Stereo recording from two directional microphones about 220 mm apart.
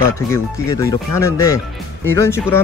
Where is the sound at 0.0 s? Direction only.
15° left (ahead or behind).